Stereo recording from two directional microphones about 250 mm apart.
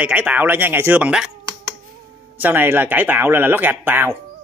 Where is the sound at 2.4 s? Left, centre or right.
Centre.